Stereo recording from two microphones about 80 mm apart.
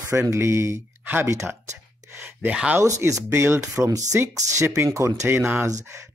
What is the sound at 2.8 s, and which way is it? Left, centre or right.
Speech, right.